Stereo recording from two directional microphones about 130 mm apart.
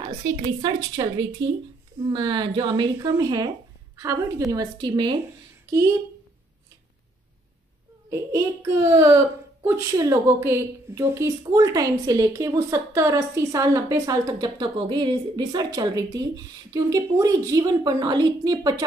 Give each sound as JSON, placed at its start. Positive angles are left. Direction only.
{"t": 0.6, "sound": "a woman's voice", "side_deg": -30}
{"t": 8.1, "sound": "a woman's voice", "side_deg": -20}